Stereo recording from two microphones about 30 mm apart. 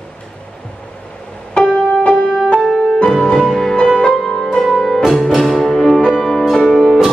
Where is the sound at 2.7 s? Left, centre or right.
Centre.